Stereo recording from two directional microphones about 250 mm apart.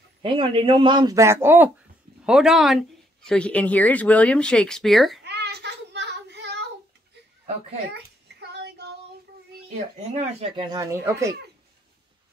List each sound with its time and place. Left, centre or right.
0.2 s speech: right; by 5.2 s centre
5.2 s child singing: right
7.9 s child singing: right
9.5 s speech: right